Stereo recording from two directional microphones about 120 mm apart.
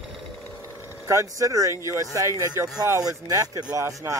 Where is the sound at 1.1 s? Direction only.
25° right (ahead or behind).